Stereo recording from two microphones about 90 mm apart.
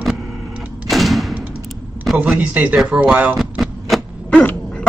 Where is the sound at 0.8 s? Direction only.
Centre (ahead or behind).